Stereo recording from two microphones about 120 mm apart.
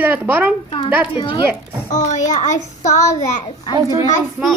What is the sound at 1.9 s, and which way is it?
Child singing, 80° left.